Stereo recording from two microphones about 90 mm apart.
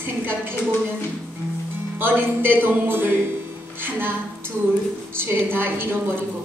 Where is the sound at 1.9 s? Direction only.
25° right (ahead or behind).